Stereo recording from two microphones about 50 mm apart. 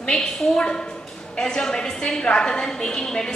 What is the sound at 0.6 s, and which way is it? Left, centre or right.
A woman's voice, centre.